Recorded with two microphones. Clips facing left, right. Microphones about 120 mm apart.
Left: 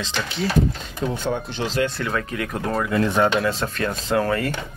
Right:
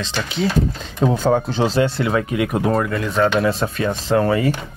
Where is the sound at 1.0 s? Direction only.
90° right.